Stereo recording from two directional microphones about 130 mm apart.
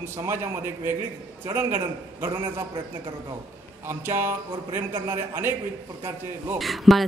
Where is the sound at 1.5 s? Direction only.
20° right (ahead or behind).